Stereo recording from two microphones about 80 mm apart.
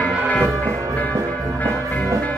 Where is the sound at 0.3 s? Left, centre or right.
Centre.